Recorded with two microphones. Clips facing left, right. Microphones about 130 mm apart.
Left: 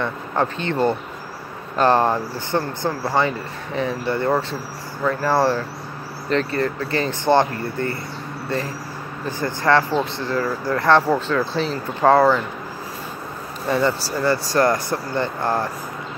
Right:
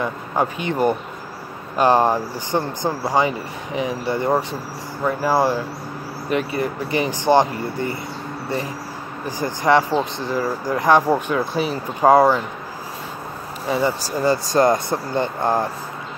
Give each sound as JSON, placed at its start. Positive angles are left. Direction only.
{"t": 0.0, "sound": "speech", "side_deg": -10}
{"t": 9.2, "sound": "speech", "side_deg": -15}
{"t": 13.7, "sound": "speech", "side_deg": -10}